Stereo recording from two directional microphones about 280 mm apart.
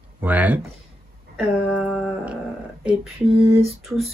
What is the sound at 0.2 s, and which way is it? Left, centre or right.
Speech, centre.